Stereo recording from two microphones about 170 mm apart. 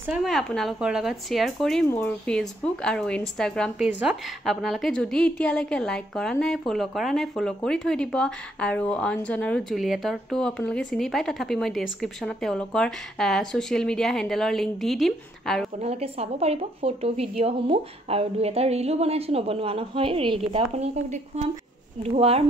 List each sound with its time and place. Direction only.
0.1 s speech: centre (ahead or behind)
15.8 s speech: 35° right (ahead or behind)